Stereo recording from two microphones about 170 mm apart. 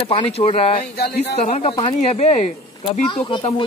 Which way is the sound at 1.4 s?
40° left (ahead or behind).